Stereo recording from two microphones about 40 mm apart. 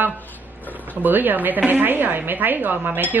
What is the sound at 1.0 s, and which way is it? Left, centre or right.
Speech, right.